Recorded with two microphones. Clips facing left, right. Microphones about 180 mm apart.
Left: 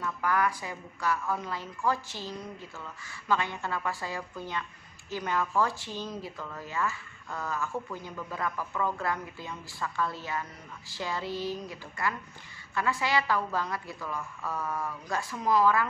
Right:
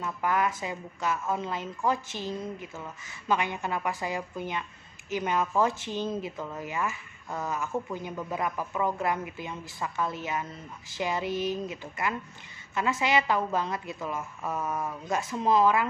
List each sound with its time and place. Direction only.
0.0 s speech: 20° right (ahead or behind)